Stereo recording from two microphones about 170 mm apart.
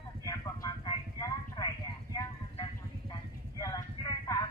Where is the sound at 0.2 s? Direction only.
20° left (ahead or behind).